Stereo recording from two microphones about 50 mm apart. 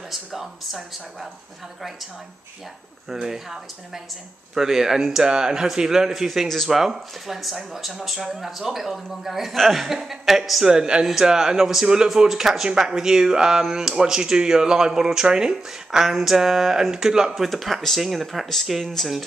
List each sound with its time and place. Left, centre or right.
0.1 s speech: centre
3.1 s speech: centre
6.2 s speech: centre
10.7 s speech: centre
17.3 s speech: centre